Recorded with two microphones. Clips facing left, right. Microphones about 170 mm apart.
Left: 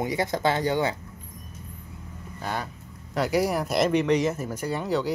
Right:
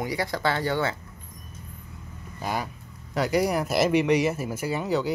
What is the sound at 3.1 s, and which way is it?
Speech, centre (ahead or behind).